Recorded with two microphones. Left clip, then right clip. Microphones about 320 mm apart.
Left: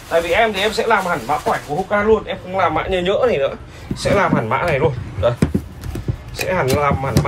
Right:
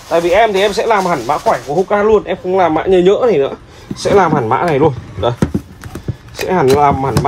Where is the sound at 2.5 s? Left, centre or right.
Right.